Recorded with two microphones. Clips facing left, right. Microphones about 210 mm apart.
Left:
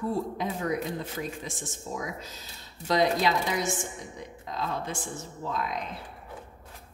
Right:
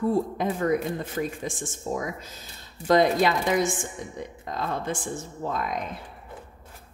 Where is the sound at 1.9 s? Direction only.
50° right (ahead or behind).